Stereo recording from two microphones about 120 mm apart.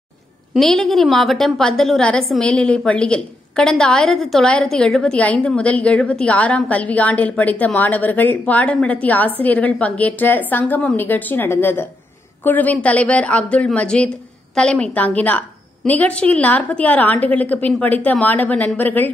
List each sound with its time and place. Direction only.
0.6 s a woman's voice: centre (ahead or behind)